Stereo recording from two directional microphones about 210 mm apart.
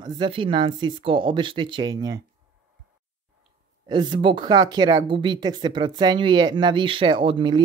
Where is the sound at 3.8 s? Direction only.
20° right (ahead or behind).